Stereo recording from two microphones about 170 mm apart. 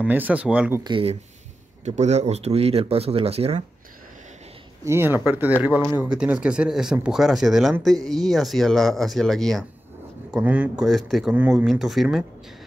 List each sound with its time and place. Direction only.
0.0 s speech: 10° right (ahead or behind)
0.8 s speech: 30° right (ahead or behind)
1.9 s speech: 40° right (ahead or behind)
4.8 s speech: 15° right (ahead or behind)